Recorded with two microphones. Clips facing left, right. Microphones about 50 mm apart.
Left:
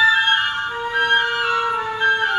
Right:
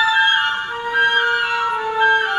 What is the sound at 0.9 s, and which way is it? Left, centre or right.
Flute, centre.